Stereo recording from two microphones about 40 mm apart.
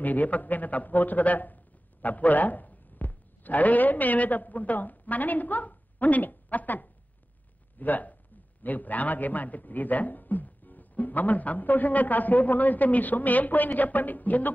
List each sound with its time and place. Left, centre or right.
0.0 s a man's voice: left